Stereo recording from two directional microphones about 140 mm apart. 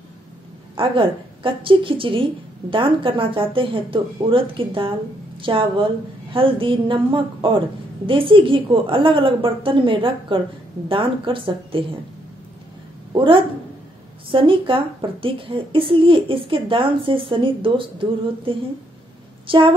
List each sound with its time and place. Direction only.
0.7 s speech: 40° right (ahead or behind)
13.1 s a woman's voice: 40° right (ahead or behind)
19.4 s a woman's voice: 40° right (ahead or behind)